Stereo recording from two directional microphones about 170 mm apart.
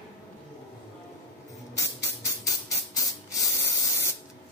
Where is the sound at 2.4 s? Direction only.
20° left (ahead or behind).